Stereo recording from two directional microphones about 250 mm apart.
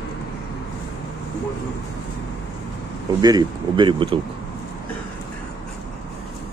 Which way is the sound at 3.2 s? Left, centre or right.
Centre.